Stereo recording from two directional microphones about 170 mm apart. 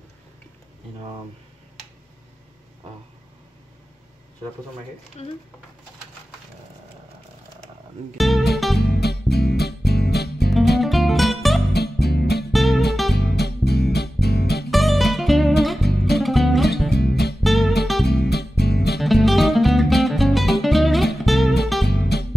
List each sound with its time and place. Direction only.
8.2 s speech: centre (ahead or behind)
8.7 s music: 75° left (ahead or behind)
10.8 s music: centre (ahead or behind)
11.7 s music: 70° left (ahead or behind)
12.5 s music: centre (ahead or behind)
13.1 s music: 70° left (ahead or behind)
14.7 s music: centre (ahead or behind)
16.9 s music: 75° left (ahead or behind)
17.4 s music: centre (ahead or behind)
18.0 s music: 75° left (ahead or behind)
18.9 s music: centre (ahead or behind)
21.8 s music: 70° left (ahead or behind)